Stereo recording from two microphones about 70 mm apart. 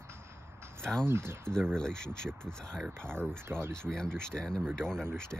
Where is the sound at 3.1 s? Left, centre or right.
Right.